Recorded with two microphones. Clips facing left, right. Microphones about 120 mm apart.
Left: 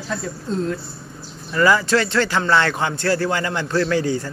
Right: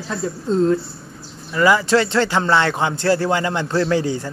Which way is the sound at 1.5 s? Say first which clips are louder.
Right 1 dB; 15° right (ahead or behind).